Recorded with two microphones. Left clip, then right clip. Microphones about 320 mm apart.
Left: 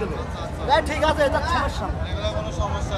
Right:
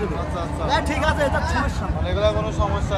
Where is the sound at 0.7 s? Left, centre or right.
Left.